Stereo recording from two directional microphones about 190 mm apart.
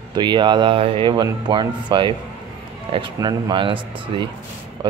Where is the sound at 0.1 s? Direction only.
25° right (ahead or behind).